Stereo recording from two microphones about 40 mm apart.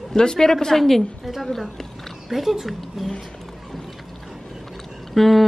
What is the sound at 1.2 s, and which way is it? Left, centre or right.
Speech, centre.